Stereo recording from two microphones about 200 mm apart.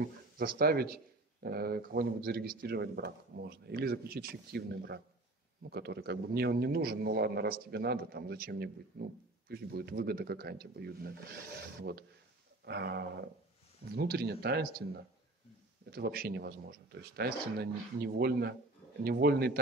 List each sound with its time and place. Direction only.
0.4 s speech: 50° right (ahead or behind)
12.6 s a sound: 55° right (ahead or behind)
13.9 s speech: 50° right (ahead or behind)
15.9 s speech: 50° right (ahead or behind)